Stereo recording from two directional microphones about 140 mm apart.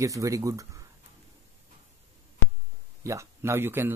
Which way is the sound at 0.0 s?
25° right (ahead or behind).